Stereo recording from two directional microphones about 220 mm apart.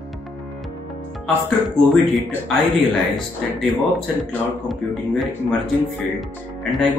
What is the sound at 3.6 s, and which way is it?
Speech, centre (ahead or behind).